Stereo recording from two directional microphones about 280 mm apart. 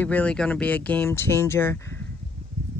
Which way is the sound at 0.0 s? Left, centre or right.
Centre.